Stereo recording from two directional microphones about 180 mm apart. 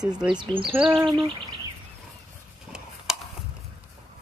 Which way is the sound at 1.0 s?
25° right (ahead or behind).